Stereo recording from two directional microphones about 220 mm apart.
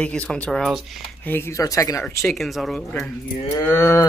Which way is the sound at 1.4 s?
15° left (ahead or behind).